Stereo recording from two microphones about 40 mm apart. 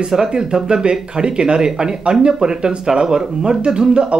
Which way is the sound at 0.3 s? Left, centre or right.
Centre.